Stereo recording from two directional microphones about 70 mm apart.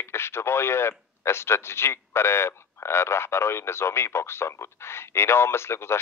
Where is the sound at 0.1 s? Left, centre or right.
Left.